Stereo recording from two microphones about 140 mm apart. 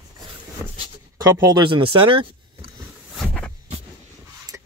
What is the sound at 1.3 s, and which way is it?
Speech, 20° right (ahead or behind).